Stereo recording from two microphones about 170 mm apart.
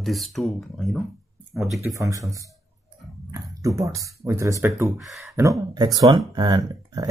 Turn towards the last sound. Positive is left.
turn(degrees=-20)  # may be behind; listen again after turning